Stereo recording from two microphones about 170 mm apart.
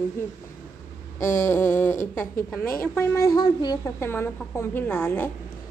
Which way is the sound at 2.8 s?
15° left (ahead or behind).